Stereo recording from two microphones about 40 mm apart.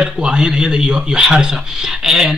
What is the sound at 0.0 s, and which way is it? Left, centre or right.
Speech, right.